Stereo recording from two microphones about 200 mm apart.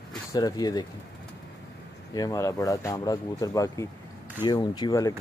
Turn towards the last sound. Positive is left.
turn(degrees=15)  # may be behind; listen again after turning